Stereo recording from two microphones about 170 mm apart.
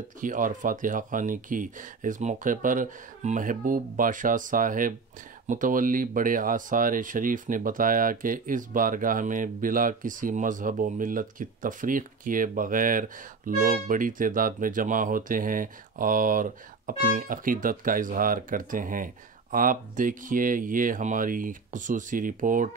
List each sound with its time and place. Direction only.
0.2 s speech: 50° right (ahead or behind)